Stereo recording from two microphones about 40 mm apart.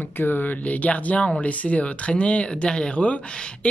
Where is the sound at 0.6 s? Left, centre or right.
Left.